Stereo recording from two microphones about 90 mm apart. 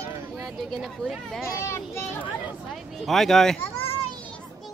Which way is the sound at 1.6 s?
30° left (ahead or behind).